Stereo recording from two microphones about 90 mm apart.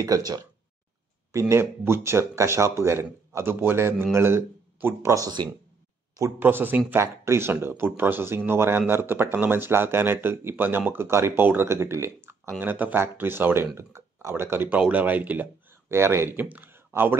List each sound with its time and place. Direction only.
0.0 s speech: 45° right (ahead or behind)
1.3 s speech: 30° right (ahead or behind)
5.4 s speech: 55° right (ahead or behind)
6.4 s speech: 20° right (ahead or behind)
15.9 s speech: 30° right (ahead or behind)